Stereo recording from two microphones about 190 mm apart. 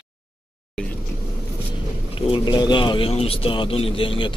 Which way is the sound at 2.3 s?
25° left (ahead or behind).